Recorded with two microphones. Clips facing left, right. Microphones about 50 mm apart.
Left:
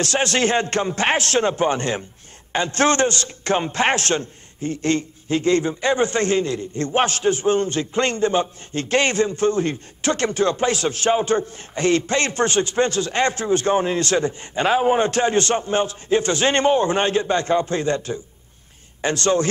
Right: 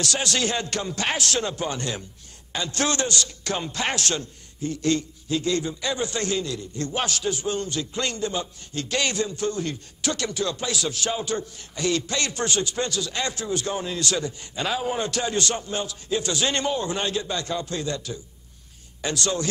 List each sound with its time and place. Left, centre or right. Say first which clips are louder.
0.0 s a man's voice: left 6 dB; left